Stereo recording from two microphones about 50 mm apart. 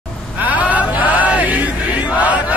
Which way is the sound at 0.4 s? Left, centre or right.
Right.